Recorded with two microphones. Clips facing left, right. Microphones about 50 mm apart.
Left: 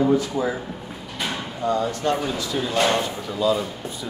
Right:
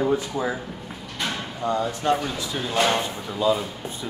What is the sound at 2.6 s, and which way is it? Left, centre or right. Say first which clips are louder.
Speech: left 1 dB; centre.